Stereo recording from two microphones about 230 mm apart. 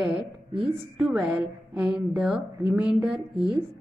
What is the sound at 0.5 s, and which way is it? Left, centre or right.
Speech, right.